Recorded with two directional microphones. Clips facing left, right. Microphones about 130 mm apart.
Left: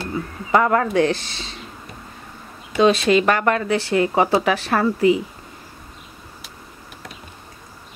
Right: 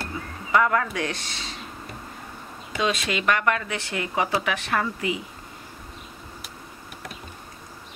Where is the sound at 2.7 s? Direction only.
30° left (ahead or behind).